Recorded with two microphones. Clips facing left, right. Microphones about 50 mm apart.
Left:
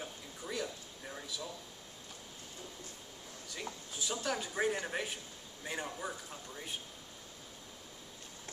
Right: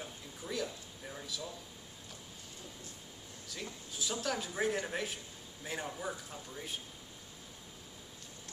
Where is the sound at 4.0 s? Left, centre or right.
Centre.